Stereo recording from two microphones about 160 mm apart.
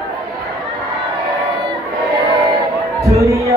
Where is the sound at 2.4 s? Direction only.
20° right (ahead or behind).